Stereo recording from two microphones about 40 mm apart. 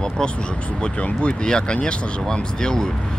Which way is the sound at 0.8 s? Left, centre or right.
Left.